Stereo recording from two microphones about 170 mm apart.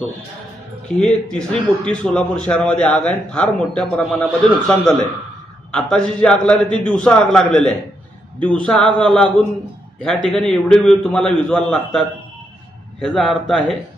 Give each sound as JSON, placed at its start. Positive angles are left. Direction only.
{"t": 0.8, "sound": "a man's voice", "side_deg": 5}
{"t": 10.3, "sound": "a man's voice", "side_deg": 5}
{"t": 13.0, "sound": "a man's voice", "side_deg": 0}